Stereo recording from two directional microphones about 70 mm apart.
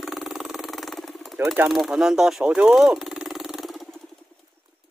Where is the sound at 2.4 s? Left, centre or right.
Centre.